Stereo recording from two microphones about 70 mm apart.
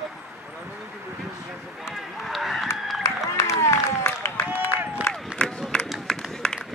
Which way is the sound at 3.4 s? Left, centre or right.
Left.